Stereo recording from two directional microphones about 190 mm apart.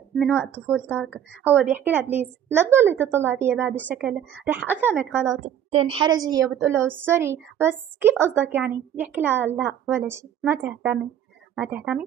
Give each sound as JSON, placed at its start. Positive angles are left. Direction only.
{"t": 0.2, "sound": "a woman's voice", "side_deg": 5}
{"t": 1.6, "sound": "a woman's voice", "side_deg": -10}
{"t": 5.7, "sound": "a woman's voice", "side_deg": -30}